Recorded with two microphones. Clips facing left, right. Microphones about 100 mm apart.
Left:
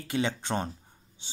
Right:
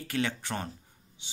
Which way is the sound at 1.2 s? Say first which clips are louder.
Left 1 dB; 35° left (ahead or behind).